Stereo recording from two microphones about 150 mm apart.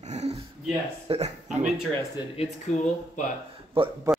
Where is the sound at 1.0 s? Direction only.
45° right (ahead or behind).